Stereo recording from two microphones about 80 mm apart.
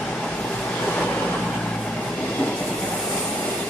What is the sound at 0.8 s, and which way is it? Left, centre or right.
Waves, centre.